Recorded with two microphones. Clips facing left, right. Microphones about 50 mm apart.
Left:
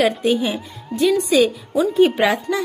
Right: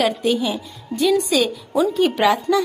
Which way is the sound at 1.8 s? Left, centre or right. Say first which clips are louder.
Left 2 dB; centre.